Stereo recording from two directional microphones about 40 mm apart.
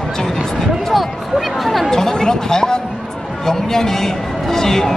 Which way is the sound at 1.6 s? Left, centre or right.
Centre.